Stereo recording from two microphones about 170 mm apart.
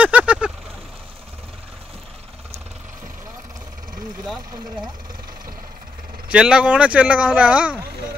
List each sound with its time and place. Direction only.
0.0 s vehicle: 10° right (ahead or behind)
6.3 s speech: 5° right (ahead or behind)